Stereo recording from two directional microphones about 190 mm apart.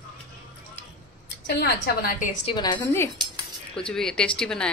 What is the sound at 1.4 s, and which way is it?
Speech, 60° left (ahead or behind).